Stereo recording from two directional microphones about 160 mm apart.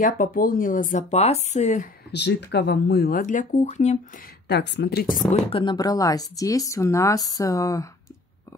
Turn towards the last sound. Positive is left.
turn(degrees=20)  # may be behind; listen again after turning